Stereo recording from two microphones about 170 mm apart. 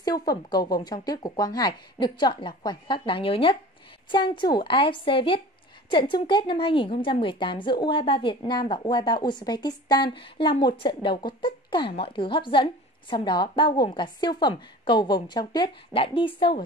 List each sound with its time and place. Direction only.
0.0 s a woman's voice: 25° left (ahead or behind)